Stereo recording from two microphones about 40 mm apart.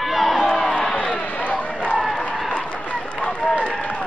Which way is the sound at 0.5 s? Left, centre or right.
Left.